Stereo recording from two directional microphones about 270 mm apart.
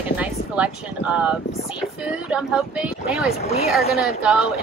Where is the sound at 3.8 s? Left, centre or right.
Left.